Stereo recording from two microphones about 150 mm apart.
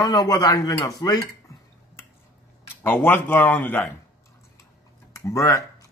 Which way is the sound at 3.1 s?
15° left (ahead or behind).